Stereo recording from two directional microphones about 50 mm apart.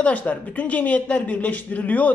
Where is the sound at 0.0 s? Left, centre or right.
Left.